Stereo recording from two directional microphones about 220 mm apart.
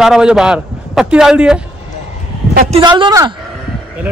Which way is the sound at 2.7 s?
20° right (ahead or behind).